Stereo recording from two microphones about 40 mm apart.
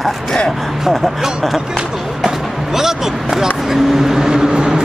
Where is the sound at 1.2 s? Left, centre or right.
Centre.